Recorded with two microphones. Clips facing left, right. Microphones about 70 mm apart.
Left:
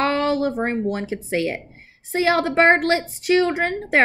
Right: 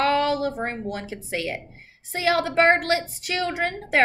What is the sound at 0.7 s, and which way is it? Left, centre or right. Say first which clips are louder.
A woman's voice: left 7 dB; left.